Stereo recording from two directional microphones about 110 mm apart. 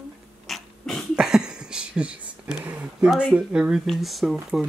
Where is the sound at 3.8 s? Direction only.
Centre (ahead or behind).